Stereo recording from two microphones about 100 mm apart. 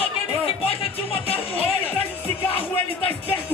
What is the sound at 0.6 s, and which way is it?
Music, 75° left (ahead or behind).